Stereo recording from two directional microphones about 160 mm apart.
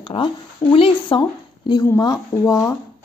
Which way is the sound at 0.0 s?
30° left (ahead or behind).